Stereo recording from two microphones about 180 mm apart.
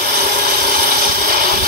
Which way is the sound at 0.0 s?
55° right (ahead or behind).